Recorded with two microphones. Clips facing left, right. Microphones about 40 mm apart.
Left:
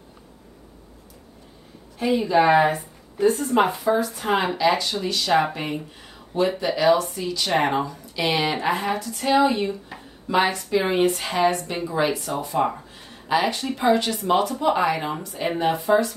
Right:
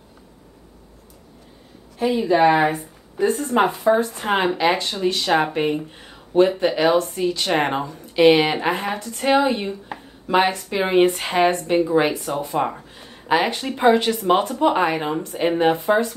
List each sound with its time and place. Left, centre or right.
2.0 s speech: centre
4.2 s speech: right
9.8 s a sound: right
10.7 s speech: right
13.3 s speech: right